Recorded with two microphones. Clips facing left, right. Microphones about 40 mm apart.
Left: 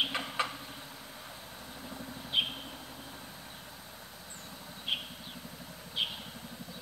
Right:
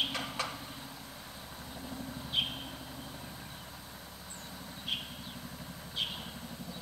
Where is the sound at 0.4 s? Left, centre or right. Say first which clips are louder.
Left 5 dB; left.